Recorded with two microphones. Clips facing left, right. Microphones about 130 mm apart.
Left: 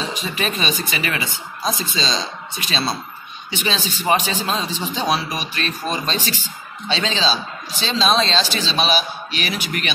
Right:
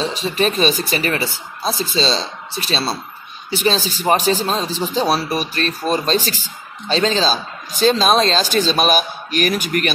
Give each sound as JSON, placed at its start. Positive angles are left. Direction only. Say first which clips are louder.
{"t": 0.0, "sound": "a man's voice", "louder": "right 6 dB", "side_deg": -35}